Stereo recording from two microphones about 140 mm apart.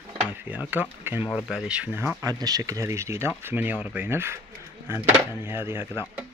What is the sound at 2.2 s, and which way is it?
Speech, 25° right (ahead or behind).